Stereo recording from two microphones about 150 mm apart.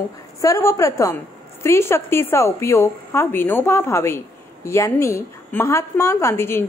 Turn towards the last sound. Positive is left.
turn(degrees=15)  # may be behind; listen again after turning